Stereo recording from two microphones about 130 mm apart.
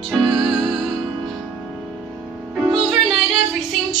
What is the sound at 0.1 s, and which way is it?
Music, centre (ahead or behind).